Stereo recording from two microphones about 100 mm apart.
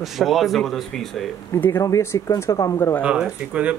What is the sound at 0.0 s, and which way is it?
Speech, centre (ahead or behind).